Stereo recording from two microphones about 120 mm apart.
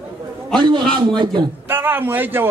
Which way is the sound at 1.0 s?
40° right (ahead or behind).